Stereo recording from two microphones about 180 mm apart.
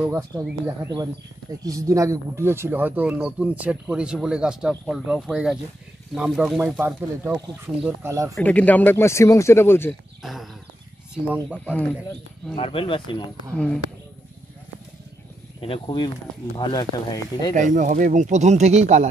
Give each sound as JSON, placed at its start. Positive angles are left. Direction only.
{"t": 0.0, "sound": "speech", "side_deg": -15}
{"t": 8.4, "sound": "speech", "side_deg": 10}
{"t": 10.2, "sound": "speech", "side_deg": 0}
{"t": 11.6, "sound": "speech", "side_deg": 5}
{"t": 12.5, "sound": "speech", "side_deg": 30}
{"t": 13.5, "sound": "speech", "side_deg": 5}
{"t": 15.6, "sound": "speech", "side_deg": 30}
{"t": 17.6, "sound": "speech", "side_deg": -45}